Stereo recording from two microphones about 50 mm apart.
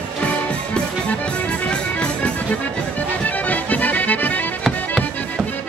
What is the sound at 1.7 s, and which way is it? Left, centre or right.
Music, left.